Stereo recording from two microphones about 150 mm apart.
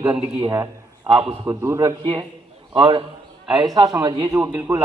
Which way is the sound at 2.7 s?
35° right (ahead or behind).